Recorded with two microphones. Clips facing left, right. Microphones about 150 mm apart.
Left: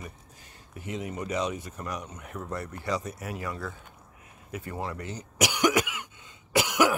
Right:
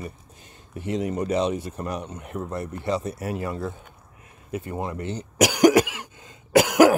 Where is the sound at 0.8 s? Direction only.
35° right (ahead or behind).